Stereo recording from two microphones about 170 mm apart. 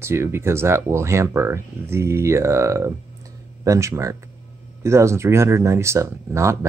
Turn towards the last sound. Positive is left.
turn(degrees=-15)  # may be behind; listen again after turning